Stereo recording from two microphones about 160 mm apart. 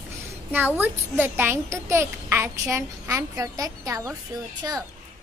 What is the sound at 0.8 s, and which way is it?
A child's voice, 15° right (ahead or behind).